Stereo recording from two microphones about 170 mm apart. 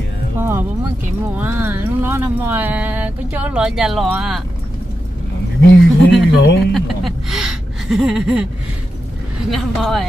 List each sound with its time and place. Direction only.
0.4 s music: 15° right (ahead or behind)
1.3 s speech: 10° right (ahead or behind)
5.6 s speech: 85° left
6.7 s a sound: centre (ahead or behind)
9.5 s speech: centre (ahead or behind)